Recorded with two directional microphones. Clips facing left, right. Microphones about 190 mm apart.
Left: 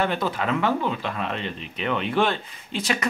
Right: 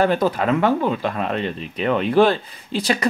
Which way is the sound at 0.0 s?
40° right (ahead or behind).